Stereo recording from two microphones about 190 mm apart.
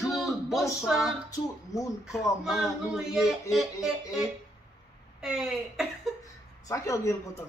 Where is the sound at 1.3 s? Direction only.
20° left (ahead or behind).